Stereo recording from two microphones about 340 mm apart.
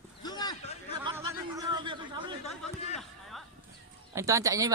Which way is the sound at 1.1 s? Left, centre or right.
Centre.